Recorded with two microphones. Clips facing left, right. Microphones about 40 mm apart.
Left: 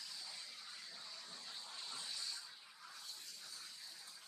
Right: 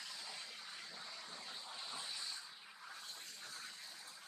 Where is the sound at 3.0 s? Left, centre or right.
Right.